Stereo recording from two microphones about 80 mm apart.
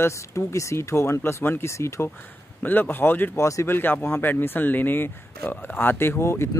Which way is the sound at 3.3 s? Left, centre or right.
Left.